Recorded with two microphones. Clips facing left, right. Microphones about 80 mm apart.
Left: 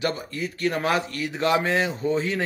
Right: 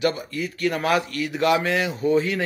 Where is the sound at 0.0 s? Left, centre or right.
Left.